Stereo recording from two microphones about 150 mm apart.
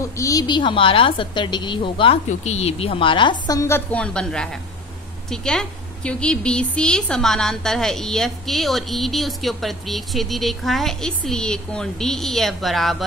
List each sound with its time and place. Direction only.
0.0 s a woman's voice: 20° left (ahead or behind); by 12.9 s centre (ahead or behind)